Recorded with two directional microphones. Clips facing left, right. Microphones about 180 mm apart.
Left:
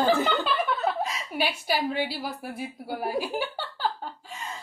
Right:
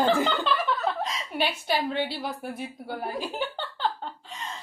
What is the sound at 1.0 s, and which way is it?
A woman's voice, 5° left (ahead or behind).